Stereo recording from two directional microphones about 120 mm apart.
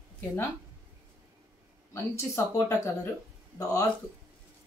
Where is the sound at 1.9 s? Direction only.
20° left (ahead or behind).